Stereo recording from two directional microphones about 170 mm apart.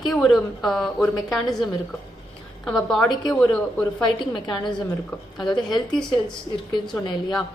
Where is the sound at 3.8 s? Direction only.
25° left (ahead or behind).